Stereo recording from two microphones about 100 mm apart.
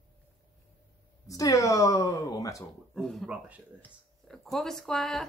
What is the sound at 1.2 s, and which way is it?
Speech, 35° left (ahead or behind).